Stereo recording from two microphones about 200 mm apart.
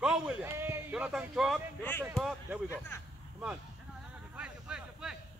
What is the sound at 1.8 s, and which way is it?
Speech, 10° left (ahead or behind).